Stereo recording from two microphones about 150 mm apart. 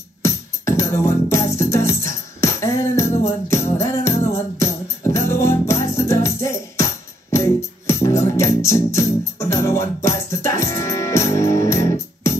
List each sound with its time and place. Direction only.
0.2 s music: 20° left (ahead or behind)